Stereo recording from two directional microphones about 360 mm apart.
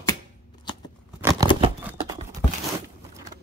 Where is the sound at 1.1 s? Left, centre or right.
Centre.